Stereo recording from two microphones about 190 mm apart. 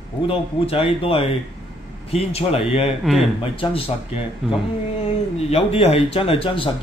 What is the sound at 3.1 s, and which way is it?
Speech, centre (ahead or behind).